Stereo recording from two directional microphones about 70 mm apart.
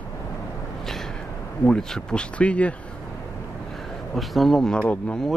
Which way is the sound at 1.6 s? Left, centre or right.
Centre.